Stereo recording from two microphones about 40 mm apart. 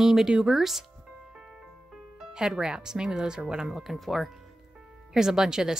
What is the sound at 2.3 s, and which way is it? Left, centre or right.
A woman's voice, centre.